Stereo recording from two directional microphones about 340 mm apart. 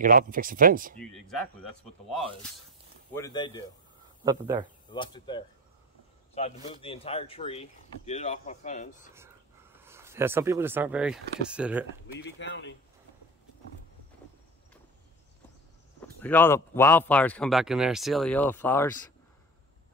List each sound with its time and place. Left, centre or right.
0.0 s speech: right
1.1 s speech: centre
3.2 s speech: centre
4.2 s speech: centre
4.9 s speech: centre
9.8 s speech: centre
12.2 s speech: left
16.2 s speech: centre